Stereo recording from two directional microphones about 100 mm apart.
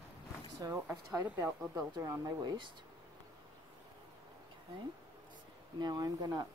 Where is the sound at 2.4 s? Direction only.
45° right (ahead or behind).